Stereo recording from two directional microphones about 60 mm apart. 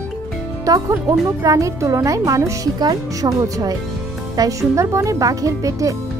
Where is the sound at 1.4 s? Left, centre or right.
Right.